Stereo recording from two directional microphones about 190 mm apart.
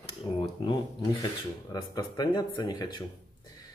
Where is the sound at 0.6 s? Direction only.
20° left (ahead or behind).